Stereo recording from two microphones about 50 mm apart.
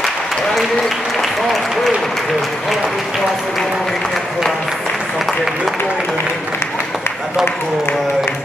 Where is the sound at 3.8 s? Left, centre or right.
Centre.